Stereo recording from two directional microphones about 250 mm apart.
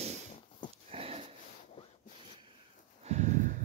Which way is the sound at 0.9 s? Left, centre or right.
Right.